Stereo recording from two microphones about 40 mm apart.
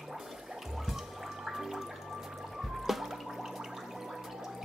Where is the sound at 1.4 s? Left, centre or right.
Centre.